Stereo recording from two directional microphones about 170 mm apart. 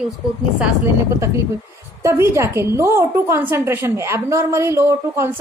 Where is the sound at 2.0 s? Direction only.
15° right (ahead or behind).